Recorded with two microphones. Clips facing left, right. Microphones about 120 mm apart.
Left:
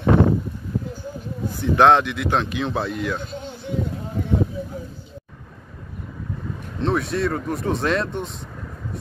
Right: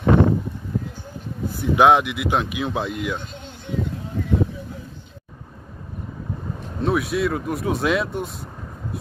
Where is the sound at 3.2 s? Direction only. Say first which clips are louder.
Left 5 dB; 40° left (ahead or behind).